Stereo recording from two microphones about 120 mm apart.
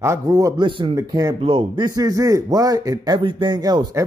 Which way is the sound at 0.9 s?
30° right (ahead or behind).